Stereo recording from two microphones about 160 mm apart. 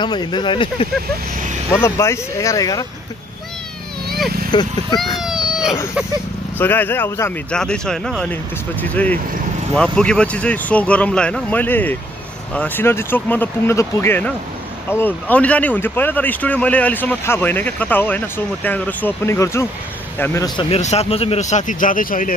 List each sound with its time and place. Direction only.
0.0 s speech: 30° left (ahead or behind)
1.7 s speech: 15° left (ahead or behind)
4.5 s speech: 25° left (ahead or behind)
5.2 s a sound: 5° right (ahead or behind)
6.6 s speech: 10° left (ahead or behind)
20.5 s speech: 40° left (ahead or behind); by 22.3 s 60° left (ahead or behind)